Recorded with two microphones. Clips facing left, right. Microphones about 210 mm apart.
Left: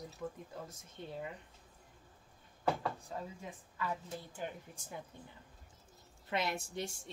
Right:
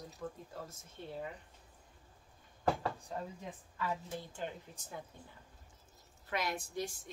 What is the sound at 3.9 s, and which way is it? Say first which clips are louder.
A woman's voice: right 2 dB; 10° left (ahead or behind).